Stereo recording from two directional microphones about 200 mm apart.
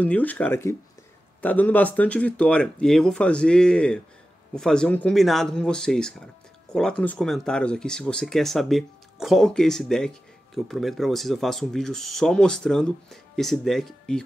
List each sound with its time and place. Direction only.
0.0 s speech: 10° left (ahead or behind)